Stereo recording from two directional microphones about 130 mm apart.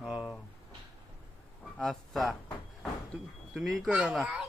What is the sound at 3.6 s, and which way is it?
Speech, centre (ahead or behind).